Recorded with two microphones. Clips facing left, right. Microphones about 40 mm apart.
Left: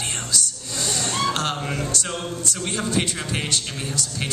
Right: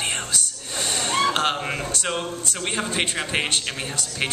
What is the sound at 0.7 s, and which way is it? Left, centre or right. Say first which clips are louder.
Gasp: right 2 dB; right.